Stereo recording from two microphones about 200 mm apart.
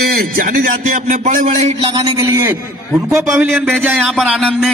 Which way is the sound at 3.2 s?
Centre (ahead or behind).